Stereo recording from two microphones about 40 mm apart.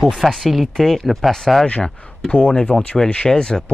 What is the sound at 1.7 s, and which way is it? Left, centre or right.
Speech, left.